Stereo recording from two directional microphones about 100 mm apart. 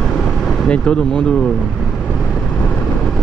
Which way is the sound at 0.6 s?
10° left (ahead or behind).